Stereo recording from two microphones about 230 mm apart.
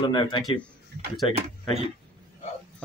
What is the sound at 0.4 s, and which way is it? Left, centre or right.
Speech, centre.